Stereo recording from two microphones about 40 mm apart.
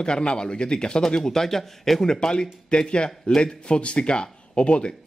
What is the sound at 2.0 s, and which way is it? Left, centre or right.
Speech, centre.